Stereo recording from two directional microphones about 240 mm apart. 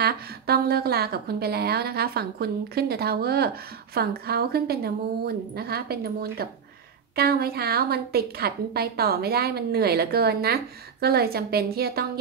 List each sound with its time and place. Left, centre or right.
0.0 s a woman's voice: right